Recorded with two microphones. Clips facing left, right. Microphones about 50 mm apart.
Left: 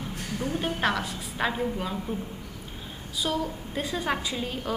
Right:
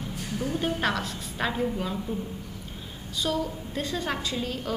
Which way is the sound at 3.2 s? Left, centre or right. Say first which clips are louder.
Even; centre.